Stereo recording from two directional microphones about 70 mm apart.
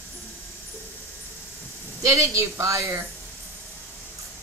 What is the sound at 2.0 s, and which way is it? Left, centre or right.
A woman's voice, right.